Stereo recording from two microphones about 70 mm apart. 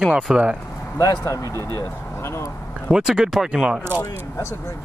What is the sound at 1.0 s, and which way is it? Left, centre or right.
Speech, left.